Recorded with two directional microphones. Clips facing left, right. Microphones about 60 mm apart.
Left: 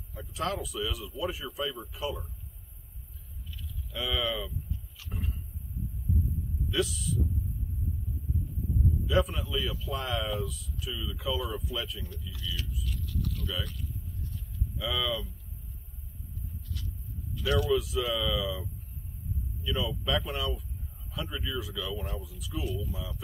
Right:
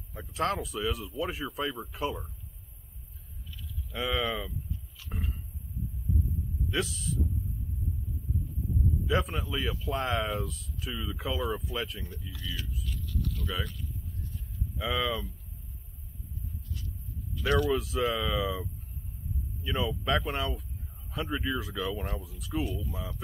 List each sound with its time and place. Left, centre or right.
0.1 s speech: right
3.9 s speech: right
6.7 s speech: right
9.0 s speech: right
12.1 s speech: centre
12.8 s vehicle: centre
13.7 s a sound: centre
14.8 s speech: right
17.3 s a sound: centre
17.6 s speech: right